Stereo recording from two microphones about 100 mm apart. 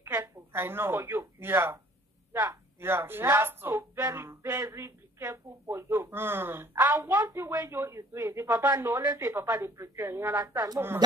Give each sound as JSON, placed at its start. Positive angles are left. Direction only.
{"t": 0.0, "sound": "speech", "side_deg": -25}